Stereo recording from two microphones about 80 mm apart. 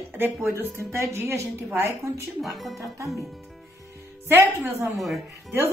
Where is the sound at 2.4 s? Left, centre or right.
Centre.